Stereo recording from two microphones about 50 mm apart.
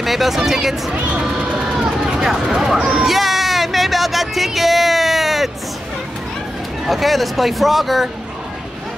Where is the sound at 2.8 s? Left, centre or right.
Right.